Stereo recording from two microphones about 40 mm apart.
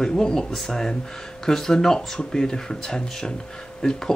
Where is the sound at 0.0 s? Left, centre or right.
Centre.